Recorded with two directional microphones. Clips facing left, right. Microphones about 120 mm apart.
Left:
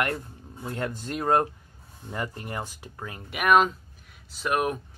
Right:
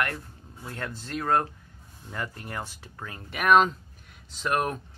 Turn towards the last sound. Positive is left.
turn(degrees=10)  # may be behind; listen again after turning